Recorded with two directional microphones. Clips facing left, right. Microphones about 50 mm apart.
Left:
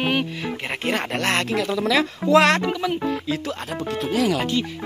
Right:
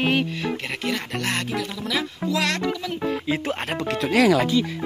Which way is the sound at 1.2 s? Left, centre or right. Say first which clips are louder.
Left 4 dB; left.